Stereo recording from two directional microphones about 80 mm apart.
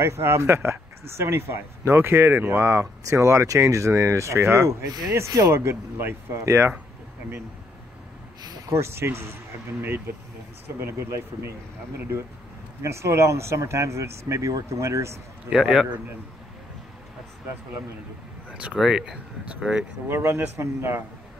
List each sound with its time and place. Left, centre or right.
0.0 s speech: right
4.8 s speech: right
5.1 s speech: right
5.5 s speech: right
8.6 s speech: right
12.8 s speech: right
15.5 s speech: centre
18.5 s a sound: centre
18.8 s speech: centre
20.1 s speech: right